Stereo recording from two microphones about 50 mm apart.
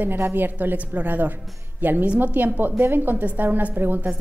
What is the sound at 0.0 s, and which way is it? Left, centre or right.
A woman's voice, right.